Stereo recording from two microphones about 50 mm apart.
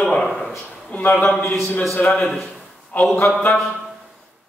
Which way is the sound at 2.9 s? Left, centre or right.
Left.